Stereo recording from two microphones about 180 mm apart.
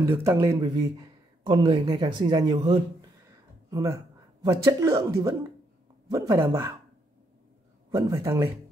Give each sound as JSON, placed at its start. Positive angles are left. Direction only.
{"t": 0.0, "sound": "speech", "side_deg": -15}
{"t": 7.9, "sound": "speech", "side_deg": -15}